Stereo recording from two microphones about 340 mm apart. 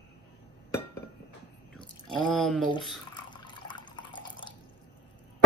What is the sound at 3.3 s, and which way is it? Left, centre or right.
Water, centre.